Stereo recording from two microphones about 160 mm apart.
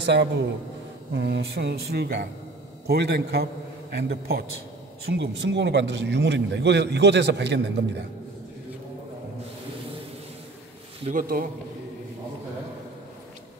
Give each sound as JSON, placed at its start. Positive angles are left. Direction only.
{"t": 0.0, "sound": "a man's voice", "side_deg": -90}
{"t": 5.0, "sound": "a man's voice", "side_deg": -90}
{"t": 11.1, "sound": "speech", "side_deg": -60}